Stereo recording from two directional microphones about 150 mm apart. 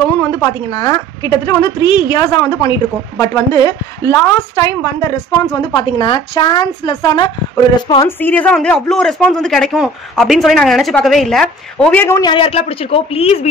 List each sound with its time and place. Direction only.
0.2 s a woman's voice: 20° left (ahead or behind)
5.6 s speech: 35° left (ahead or behind)
8.2 s speech: 10° left (ahead or behind)
12.2 s speech: 35° left (ahead or behind)